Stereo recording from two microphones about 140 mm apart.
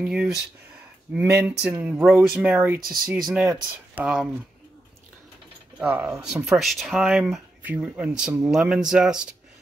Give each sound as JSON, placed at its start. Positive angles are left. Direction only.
{"t": 0.0, "sound": "speech", "side_deg": -5}
{"t": 1.1, "sound": "speech", "side_deg": -15}
{"t": 1.6, "sound": "speech", "side_deg": -5}
{"t": 5.8, "sound": "speech", "side_deg": -10}